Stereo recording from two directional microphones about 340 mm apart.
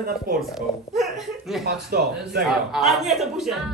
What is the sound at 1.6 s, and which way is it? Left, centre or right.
Speech, right.